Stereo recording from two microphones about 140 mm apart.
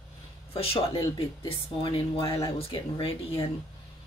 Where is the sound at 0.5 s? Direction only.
45° left (ahead or behind).